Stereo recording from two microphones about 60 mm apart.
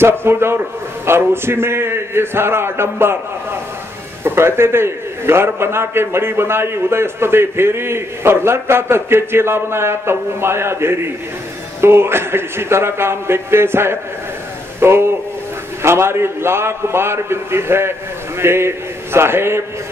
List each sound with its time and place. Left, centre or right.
0.0 s a man's voice: right
4.2 s a man's voice: right